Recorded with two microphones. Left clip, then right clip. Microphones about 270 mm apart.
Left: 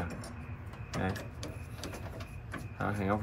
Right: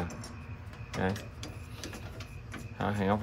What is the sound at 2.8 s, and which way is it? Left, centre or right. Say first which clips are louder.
Speech: right 3 dB; right.